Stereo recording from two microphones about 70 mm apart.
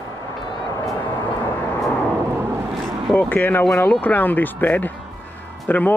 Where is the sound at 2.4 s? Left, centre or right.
Right.